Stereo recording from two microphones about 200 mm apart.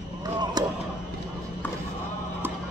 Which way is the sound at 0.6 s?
20° right (ahead or behind).